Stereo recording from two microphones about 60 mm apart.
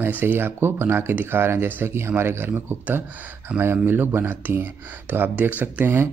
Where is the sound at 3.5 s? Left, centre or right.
Right.